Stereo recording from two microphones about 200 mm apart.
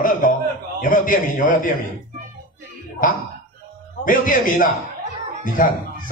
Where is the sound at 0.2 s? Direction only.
45° left (ahead or behind).